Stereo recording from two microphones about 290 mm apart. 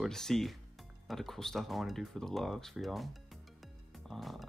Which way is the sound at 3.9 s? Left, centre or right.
Centre.